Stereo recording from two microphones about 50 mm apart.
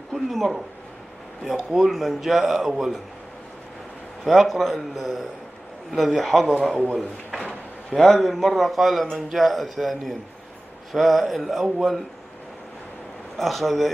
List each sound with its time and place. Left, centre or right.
0.1 s a man's voice: centre
4.2 s a man's voice: centre
7.2 s drawer open or close: centre
7.9 s a man's voice: centre
13.4 s a man's voice: centre